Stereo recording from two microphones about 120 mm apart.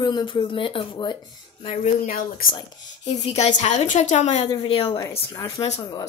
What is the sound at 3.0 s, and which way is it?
A woman's voice, 65° left (ahead or behind).